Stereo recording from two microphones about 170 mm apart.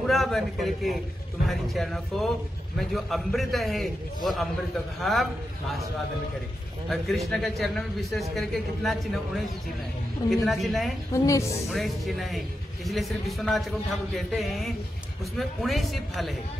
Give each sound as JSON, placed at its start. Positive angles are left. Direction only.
{"t": 0.0, "sound": "a man's voice", "side_deg": 0}
{"t": 6.9, "sound": "a man's voice", "side_deg": 0}
{"t": 11.1, "sound": "a woman's voice", "side_deg": 20}
{"t": 11.7, "sound": "a man's voice", "side_deg": 0}